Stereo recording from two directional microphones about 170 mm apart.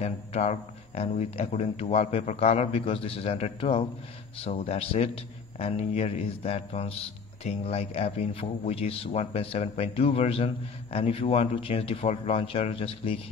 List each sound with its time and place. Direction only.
0.0 s a man's voice: 40° left (ahead or behind)